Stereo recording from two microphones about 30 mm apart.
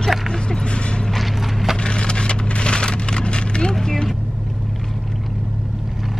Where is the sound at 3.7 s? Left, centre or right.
Centre.